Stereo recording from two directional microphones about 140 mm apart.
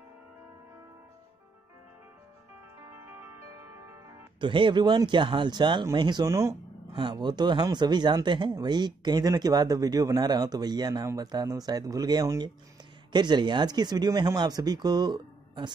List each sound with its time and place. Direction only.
4.4 s speech: 35° right (ahead or behind)
6.2 s speech: 20° right (ahead or behind)
6.9 s speech: 35° right (ahead or behind)